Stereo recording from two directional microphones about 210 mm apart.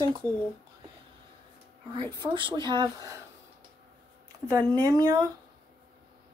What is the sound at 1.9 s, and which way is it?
Speech, 20° right (ahead or behind).